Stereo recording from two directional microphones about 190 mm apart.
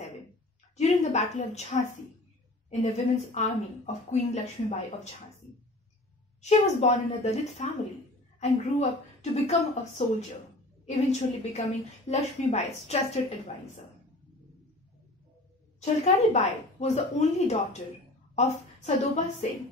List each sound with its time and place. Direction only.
0.7 s a woman's voice: 35° left (ahead or behind)
2.8 s speech: 40° left (ahead or behind)
6.4 s speech: 35° left (ahead or behind)
15.8 s a woman's voice: 35° left (ahead or behind)